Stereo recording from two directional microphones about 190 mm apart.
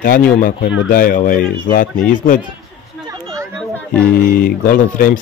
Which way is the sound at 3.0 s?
20° right (ahead or behind).